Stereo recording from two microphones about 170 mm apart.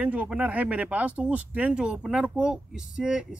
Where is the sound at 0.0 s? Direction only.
10° right (ahead or behind).